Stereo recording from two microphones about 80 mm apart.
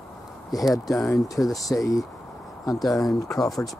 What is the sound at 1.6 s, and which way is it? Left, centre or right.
Speech, left.